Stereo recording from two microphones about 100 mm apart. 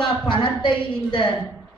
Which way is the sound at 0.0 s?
55° left (ahead or behind).